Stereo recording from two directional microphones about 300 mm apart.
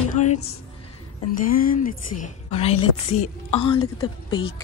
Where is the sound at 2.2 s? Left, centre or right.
Left.